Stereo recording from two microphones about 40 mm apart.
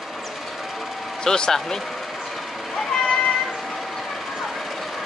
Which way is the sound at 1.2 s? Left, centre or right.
Centre.